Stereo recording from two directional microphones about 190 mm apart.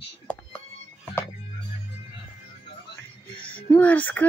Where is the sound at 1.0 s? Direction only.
10° left (ahead or behind).